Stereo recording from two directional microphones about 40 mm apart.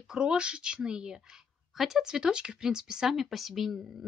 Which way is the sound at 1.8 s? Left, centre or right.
Centre.